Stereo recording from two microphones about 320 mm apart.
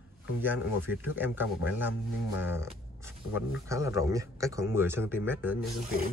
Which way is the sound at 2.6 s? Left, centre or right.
Centre.